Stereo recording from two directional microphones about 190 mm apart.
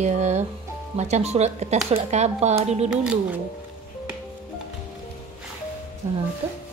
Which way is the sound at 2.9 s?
5° right (ahead or behind).